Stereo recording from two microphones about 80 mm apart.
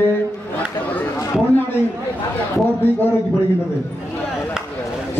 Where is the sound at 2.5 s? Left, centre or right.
Left.